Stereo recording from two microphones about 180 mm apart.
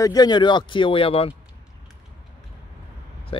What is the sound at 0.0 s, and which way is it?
Speech, 20° left (ahead or behind).